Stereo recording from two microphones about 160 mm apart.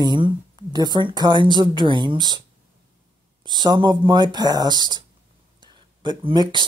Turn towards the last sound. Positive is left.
turn(degrees=-30)  # may be behind; listen again after turning